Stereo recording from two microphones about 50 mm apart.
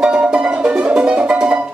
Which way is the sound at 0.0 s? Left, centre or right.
Centre.